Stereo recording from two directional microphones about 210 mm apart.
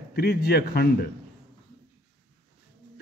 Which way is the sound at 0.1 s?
50° left (ahead or behind).